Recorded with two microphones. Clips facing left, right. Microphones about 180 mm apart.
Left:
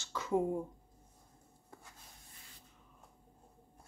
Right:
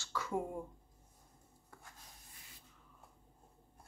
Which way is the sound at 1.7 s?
20° left (ahead or behind).